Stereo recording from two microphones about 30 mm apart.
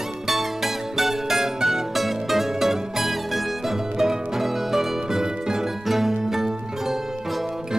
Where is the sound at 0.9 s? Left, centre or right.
Centre.